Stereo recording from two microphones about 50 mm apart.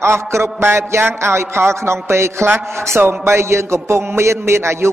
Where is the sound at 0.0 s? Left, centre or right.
Right.